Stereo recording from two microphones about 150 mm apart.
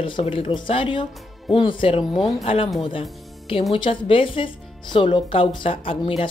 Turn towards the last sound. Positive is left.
turn(degrees=35)  # may be behind; listen again after turning